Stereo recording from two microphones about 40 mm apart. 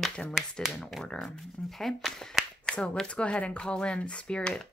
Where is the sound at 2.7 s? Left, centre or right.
Left.